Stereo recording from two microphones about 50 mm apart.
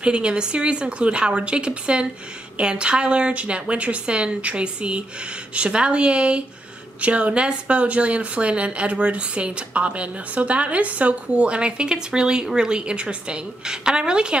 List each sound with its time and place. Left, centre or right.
0.0 s speech: centre